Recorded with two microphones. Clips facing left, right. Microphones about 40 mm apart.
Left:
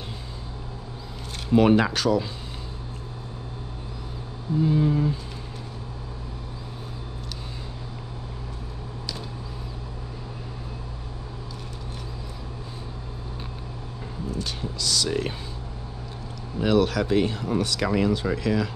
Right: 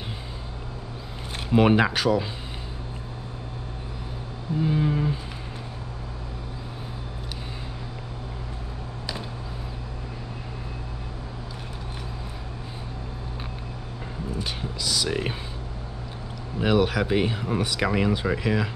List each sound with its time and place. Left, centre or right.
1.5 s speech: centre
4.6 s speech: centre
14.4 s a sound: centre
16.5 s speech: centre